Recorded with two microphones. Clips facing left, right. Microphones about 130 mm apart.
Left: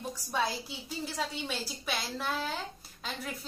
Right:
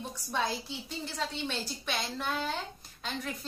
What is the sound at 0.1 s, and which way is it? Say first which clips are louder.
A woman's voice: left 1 dB; 10° left (ahead or behind).